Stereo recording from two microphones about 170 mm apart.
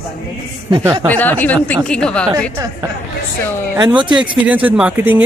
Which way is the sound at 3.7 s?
25° right (ahead or behind).